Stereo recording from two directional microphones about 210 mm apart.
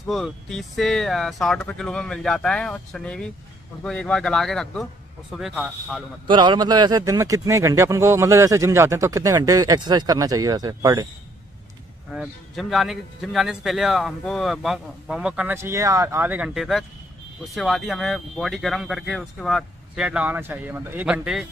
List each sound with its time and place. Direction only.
0.1 s a man's voice: centre (ahead or behind)
6.2 s speech: 20° right (ahead or behind)
12.1 s a man's voice: centre (ahead or behind)